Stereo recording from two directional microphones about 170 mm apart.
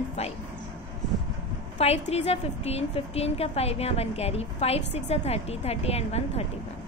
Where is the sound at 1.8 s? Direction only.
40° left (ahead or behind).